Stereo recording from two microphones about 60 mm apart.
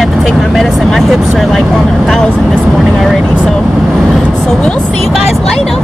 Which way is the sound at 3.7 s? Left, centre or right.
Centre.